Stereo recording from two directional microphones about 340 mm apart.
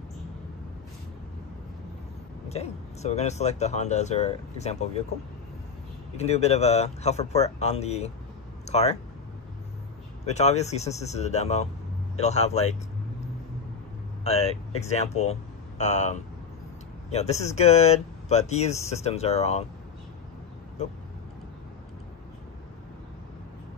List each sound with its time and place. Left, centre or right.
2.5 s speech: centre
6.1 s speech: centre
8.6 s a sound: centre
10.2 s speech: centre
14.2 s speech: centre